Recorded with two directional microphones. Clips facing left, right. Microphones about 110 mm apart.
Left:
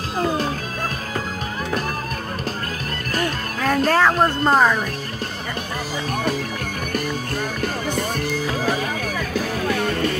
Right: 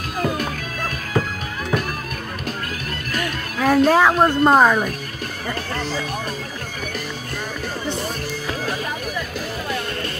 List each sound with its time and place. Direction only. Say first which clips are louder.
0.2 s music: left 1 dB; 30° left (ahead or behind)
3.6 s a woman's voice: right 3 dB; 10° right (ahead or behind)